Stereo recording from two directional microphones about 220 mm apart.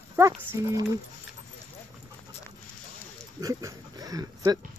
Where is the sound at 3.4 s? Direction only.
15° right (ahead or behind).